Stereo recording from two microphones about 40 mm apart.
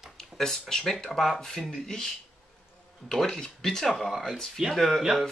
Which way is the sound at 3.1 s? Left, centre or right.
Centre.